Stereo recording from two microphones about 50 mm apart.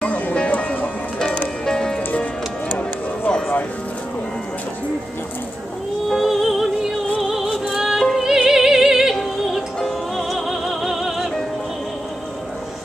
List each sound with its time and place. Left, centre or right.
0.0 s music: left
1.7 s music: centre
3.3 s music: centre
6.0 s music: centre